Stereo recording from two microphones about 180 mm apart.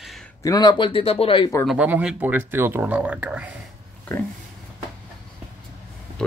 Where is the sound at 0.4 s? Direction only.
20° left (ahead or behind).